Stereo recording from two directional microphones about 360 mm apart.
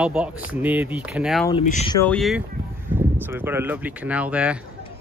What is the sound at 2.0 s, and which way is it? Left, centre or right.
Speech, centre.